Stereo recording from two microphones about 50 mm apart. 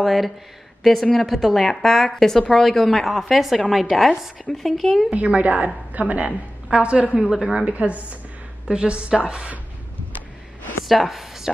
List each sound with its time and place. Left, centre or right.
0.0 s a woman's voice: centre
5.1 s a woman's voice: right
7.2 s a woman's voice: centre
7.4 s a woman's voice: right
10.9 s a woman's voice: centre